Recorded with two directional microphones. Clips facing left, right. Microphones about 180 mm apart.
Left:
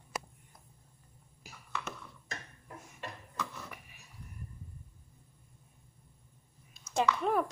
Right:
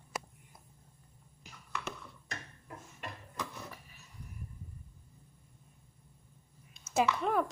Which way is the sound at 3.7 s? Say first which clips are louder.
Left 1 dB; 15° left (ahead or behind).